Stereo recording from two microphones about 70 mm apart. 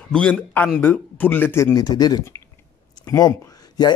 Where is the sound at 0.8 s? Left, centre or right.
Left.